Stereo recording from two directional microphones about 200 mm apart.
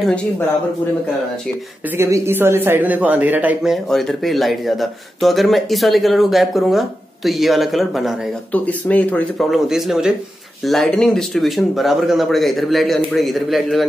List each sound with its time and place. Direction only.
2.0 s a man's voice: 15° right (ahead or behind)